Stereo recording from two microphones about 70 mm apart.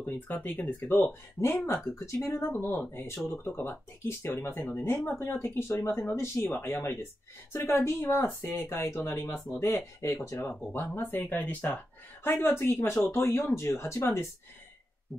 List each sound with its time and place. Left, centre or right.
0.0 s speech: left
10.7 s speech: left